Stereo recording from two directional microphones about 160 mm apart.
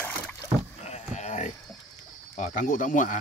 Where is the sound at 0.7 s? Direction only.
45° left (ahead or behind).